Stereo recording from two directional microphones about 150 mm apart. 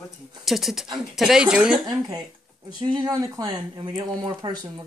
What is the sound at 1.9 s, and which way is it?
Speech, 25° right (ahead or behind).